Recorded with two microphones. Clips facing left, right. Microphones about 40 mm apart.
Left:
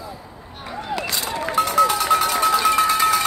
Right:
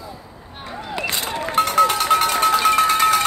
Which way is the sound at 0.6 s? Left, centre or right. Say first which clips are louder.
Left 1 dB; centre.